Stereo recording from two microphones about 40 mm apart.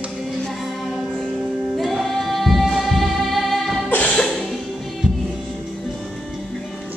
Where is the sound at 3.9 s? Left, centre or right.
Left.